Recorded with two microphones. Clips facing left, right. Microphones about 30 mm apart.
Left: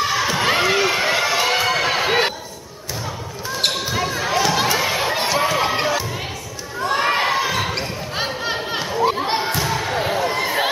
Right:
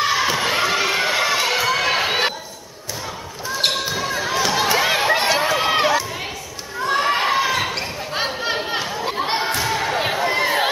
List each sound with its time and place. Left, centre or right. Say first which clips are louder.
0.0 s run: right 1 dB; centre
0.6 s run: left 1 dB; centre
1.6 s a sound: even; centre
4.1 s crowd: left 1 dB; centre
4.6 s crowd: right 2 dB; centre
5.0 s run: right 2 dB; centre
5.7 s run: right 3 dB; right
6.8 s crowd: even; centre
7.2 s basketball bounce: right 1 dB; centre
8.6 s chatter: left 1 dB; centre
9.1 s a sound: left 1 dB; centre
9.4 s basketball bounce: right 1 dB; centre
9.9 s a sound: even; right